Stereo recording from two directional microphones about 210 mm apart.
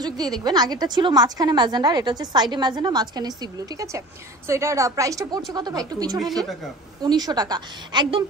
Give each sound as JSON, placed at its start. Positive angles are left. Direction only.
{"t": 0.4, "sound": "a woman's voice", "side_deg": -20}